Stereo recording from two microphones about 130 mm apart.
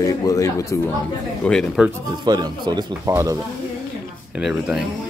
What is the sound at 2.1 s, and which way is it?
Speech, 35° right (ahead or behind).